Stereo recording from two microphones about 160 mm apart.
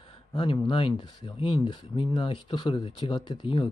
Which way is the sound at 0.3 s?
30° left (ahead or behind).